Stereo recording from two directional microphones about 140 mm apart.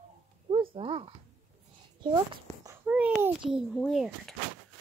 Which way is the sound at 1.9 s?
35° right (ahead or behind).